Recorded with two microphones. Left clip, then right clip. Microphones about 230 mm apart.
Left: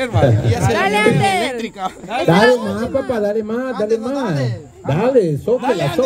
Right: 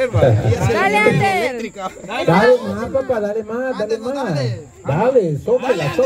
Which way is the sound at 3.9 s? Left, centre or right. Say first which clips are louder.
Left 2 dB; left.